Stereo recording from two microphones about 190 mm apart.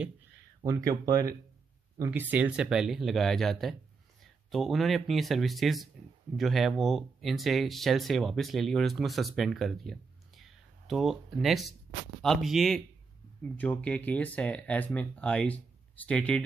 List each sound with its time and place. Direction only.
0.6 s speech: 20° right (ahead or behind)
2.0 s speech: 5° right (ahead or behind)